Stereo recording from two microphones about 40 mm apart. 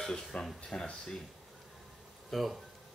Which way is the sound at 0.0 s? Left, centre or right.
Centre.